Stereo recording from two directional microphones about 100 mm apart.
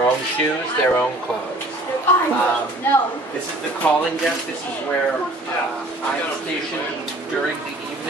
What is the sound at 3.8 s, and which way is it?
Speech, 15° left (ahead or behind).